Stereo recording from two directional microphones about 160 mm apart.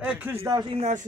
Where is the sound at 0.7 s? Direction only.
45° right (ahead or behind).